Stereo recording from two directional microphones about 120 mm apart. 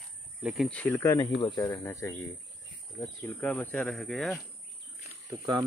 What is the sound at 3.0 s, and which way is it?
Insect, 10° left (ahead or behind).